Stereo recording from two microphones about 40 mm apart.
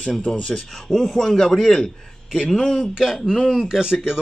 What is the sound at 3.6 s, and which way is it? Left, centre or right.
Speech, centre.